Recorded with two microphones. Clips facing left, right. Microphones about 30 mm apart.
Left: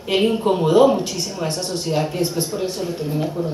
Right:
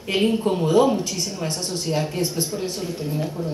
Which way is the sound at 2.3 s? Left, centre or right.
Left.